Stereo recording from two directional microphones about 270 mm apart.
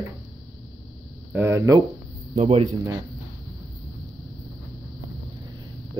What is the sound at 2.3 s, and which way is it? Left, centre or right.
Speech, right.